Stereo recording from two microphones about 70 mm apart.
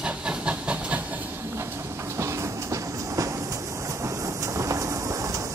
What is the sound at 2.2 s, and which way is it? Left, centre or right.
Train, right.